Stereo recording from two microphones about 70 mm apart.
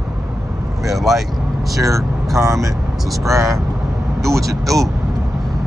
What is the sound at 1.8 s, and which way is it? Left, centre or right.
Speech, right.